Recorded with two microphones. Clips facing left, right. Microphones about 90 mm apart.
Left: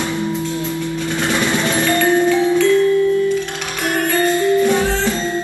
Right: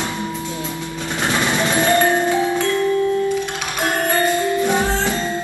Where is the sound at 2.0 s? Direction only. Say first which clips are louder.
Left 2 dB; 35° right (ahead or behind).